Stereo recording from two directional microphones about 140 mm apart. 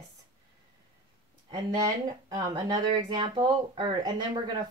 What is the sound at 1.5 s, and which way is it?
Speech, 25° right (ahead or behind).